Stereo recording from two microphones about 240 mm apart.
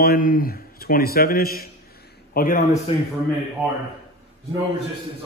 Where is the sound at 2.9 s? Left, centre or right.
Left.